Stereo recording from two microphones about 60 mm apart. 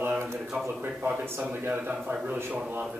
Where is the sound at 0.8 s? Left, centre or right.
Right.